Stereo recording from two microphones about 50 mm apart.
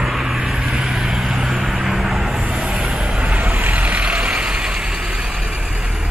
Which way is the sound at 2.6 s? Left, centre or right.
Centre.